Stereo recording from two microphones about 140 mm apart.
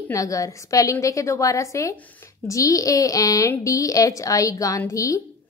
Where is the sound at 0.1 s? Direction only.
25° left (ahead or behind).